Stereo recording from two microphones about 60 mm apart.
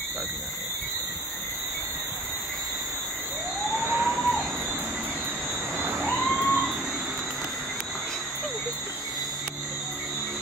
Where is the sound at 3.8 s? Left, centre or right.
Right.